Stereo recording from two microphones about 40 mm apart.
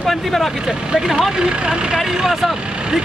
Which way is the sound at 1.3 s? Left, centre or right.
Right.